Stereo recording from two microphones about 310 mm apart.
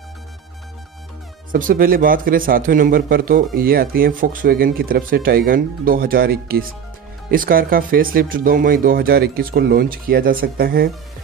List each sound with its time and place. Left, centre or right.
1.5 s speech: right